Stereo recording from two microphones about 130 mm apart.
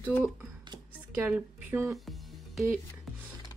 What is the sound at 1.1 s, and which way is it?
Speech, 15° right (ahead or behind).